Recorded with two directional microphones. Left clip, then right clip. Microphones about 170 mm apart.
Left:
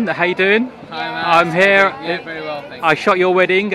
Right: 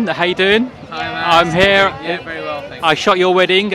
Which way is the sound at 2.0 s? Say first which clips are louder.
Right 1 dB; centre (ahead or behind).